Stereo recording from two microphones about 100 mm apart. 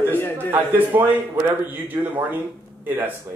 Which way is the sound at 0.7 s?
20° right (ahead or behind).